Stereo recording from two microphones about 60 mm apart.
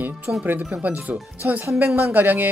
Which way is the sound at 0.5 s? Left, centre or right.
Right.